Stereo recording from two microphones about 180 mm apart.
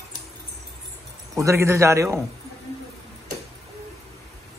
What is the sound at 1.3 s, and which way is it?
Speech, 15° right (ahead or behind).